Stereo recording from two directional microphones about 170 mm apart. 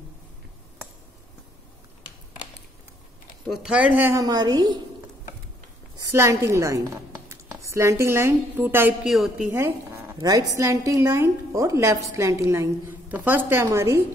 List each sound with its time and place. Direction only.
3.4 s a woman's voice: centre (ahead or behind); by 4.7 s 25° right (ahead or behind)
5.9 s a woman's voice: 20° right (ahead or behind); by 9.5 s centre (ahead or behind)
9.5 s zipper: 15° right (ahead or behind)
10.1 s a woman's voice: 20° right (ahead or behind)